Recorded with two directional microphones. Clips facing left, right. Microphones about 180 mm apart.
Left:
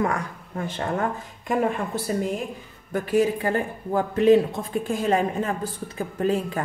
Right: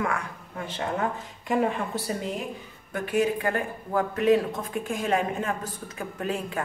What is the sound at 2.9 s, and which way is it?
A man's voice, 35° left (ahead or behind).